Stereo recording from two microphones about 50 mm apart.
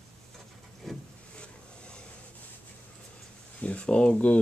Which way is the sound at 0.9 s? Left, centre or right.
Centre.